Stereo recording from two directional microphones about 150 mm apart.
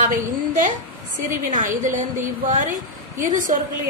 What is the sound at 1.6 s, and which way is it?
A woman's voice, 60° right (ahead or behind).